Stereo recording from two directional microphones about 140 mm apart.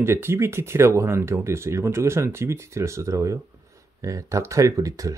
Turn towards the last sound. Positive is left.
turn(degrees=-25)  # may be behind; listen again after turning